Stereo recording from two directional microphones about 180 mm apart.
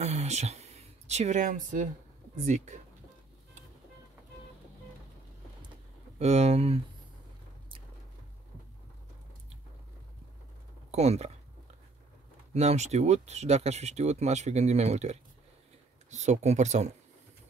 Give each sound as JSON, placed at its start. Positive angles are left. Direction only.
{"t": 0.0, "sound": "speech", "side_deg": -40}
{"t": 6.1, "sound": "speech", "side_deg": -35}
{"t": 10.9, "sound": "speech", "side_deg": -35}
{"t": 12.5, "sound": "speech", "side_deg": -40}